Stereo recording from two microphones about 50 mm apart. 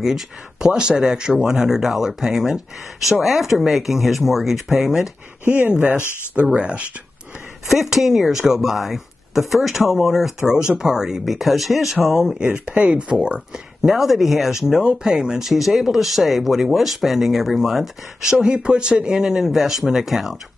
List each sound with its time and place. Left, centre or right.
0.6 s speech: centre
5.4 s speech: right
6.5 s speech: right
7.6 s speech: centre